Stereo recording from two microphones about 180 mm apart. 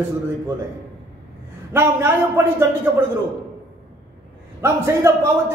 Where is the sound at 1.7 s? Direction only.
10° right (ahead or behind).